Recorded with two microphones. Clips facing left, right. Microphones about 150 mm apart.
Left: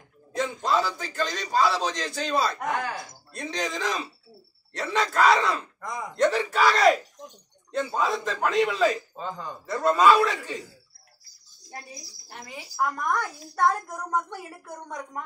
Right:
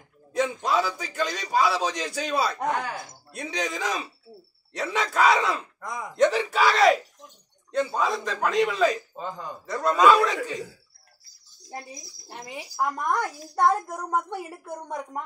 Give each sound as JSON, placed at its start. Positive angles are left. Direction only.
{"t": 0.4, "sound": "a man's voice", "side_deg": -5}
{"t": 9.7, "sound": "a man's voice", "side_deg": 0}
{"t": 11.7, "sound": "speech", "side_deg": -20}